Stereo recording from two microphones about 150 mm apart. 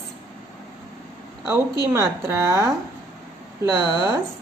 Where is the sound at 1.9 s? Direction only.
20° right (ahead or behind).